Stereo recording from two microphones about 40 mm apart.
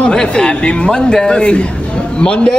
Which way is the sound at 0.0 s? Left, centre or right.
Left.